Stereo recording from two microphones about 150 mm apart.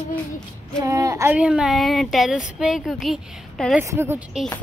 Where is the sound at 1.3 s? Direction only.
5° right (ahead or behind).